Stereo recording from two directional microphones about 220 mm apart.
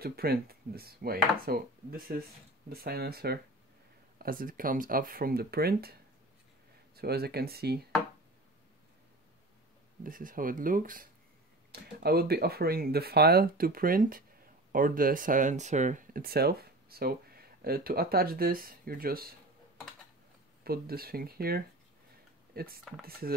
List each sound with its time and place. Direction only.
0.0 s speech: 45° right (ahead or behind)
7.0 s speech: 45° right (ahead or behind)
10.0 s speech: 40° right (ahead or behind)
20.6 s speech: 45° right (ahead or behind)